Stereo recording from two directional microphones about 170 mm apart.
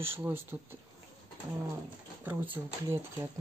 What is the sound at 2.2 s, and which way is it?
Speech, 10° right (ahead or behind).